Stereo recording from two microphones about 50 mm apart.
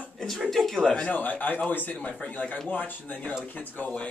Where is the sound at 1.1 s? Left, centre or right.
Left.